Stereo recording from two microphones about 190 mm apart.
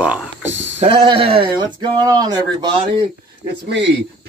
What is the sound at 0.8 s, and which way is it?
Speech, 30° right (ahead or behind).